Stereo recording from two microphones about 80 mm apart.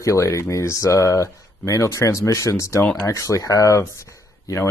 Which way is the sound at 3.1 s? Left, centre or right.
Left.